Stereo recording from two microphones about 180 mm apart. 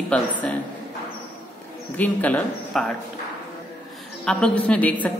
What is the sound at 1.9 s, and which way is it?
Speech, 10° left (ahead or behind).